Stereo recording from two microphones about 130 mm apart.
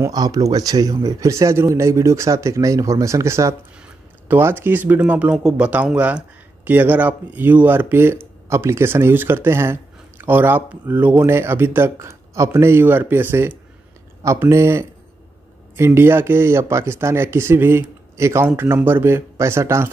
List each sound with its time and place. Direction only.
0.0 s speech: 30° right (ahead or behind)